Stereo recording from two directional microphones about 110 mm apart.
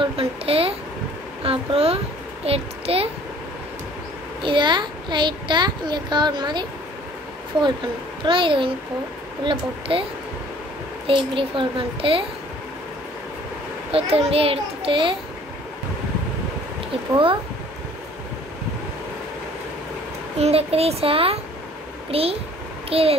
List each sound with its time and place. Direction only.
0.0 s a sound: 60° right (ahead or behind)
2.4 s a child's voice: 60° right (ahead or behind)
4.4 s a child's voice: 50° right (ahead or behind)
8.3 s a child's voice: 50° right (ahead or behind)
11.1 s a child's voice: 55° right (ahead or behind)
13.9 s a child's voice: 60° right (ahead or behind)
20.3 s a child's voice: 70° right (ahead or behind)